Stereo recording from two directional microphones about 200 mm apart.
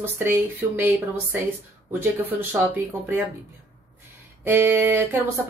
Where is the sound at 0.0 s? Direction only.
10° right (ahead or behind).